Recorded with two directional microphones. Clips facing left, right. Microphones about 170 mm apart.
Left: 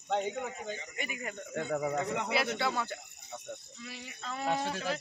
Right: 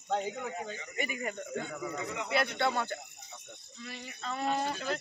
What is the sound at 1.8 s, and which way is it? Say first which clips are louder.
Speech: left 5 dB; 55° left (ahead or behind).